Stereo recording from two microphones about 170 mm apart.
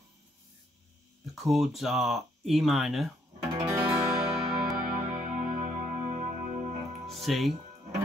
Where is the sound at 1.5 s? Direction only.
Centre (ahead or behind).